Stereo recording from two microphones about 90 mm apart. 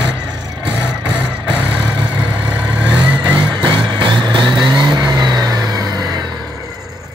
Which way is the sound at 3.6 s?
60° right (ahead or behind).